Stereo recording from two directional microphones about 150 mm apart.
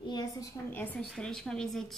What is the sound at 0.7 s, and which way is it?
Speech, 10° left (ahead or behind).